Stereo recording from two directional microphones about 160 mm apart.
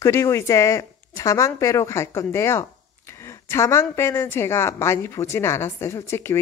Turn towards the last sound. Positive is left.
turn(degrees=15)  # may be behind; listen again after turning